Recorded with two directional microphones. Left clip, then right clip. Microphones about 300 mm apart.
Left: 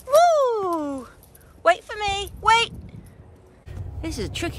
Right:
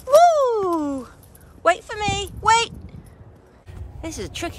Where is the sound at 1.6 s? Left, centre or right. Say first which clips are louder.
Even; centre.